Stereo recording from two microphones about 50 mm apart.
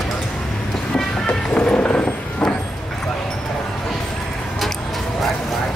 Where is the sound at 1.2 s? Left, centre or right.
Left.